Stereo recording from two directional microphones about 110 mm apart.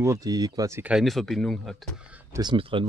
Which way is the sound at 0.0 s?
30° right (ahead or behind).